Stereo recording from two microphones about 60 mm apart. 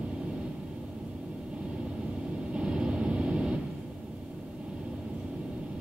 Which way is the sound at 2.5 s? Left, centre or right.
Centre.